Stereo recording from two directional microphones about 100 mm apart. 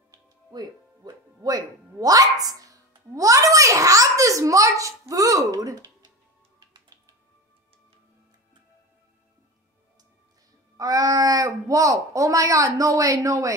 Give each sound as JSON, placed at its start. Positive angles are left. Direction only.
{"t": 0.1, "sound": "speech", "side_deg": -45}
{"t": 10.8, "sound": "speech", "side_deg": -35}